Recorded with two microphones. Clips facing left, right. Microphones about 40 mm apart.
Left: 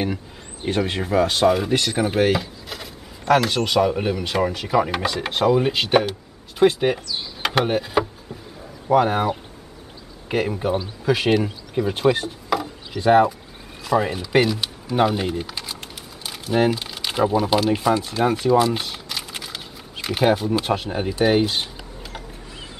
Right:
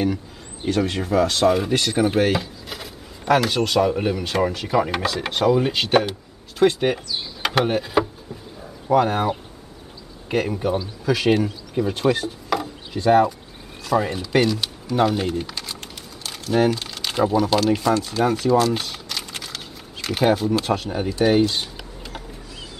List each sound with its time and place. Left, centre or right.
0.7 s speech: centre
1.5 s speech: centre